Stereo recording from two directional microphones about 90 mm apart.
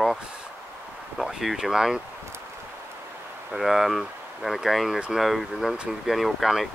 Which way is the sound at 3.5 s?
Centre (ahead or behind).